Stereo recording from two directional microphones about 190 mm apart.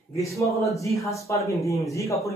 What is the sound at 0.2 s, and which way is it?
A man's voice, 15° left (ahead or behind).